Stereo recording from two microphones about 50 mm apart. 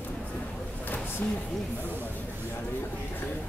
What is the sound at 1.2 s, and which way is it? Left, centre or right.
Speech, left.